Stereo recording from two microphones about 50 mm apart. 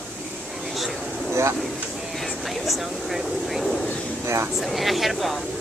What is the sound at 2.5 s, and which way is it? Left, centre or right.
Speech, centre.